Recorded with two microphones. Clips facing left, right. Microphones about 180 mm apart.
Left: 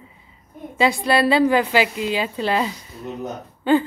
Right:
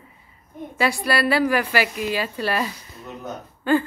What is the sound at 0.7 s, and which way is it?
A woman's voice, 20° left (ahead or behind).